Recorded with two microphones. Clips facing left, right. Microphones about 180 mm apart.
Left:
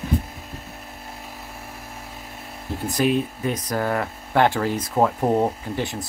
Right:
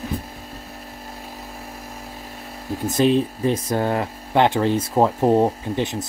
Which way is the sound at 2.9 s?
25° right (ahead or behind).